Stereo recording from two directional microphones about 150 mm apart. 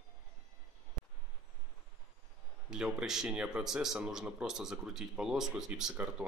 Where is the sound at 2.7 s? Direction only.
5° right (ahead or behind).